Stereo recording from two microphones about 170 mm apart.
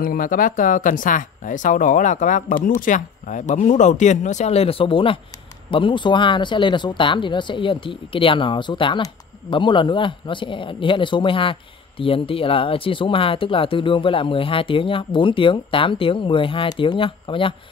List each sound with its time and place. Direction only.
0.0 s speech: 55° left (ahead or behind); by 17.6 s 30° left (ahead or behind)